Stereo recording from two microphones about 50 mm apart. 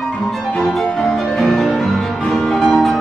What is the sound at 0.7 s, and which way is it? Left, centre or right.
Music, centre.